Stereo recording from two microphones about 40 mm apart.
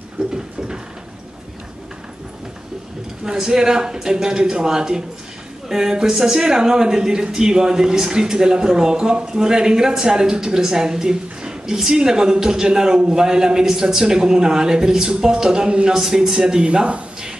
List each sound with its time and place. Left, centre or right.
3.3 s a man's voice: centre